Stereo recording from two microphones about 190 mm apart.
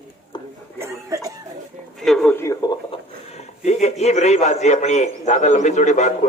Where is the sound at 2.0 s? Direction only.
5° left (ahead or behind).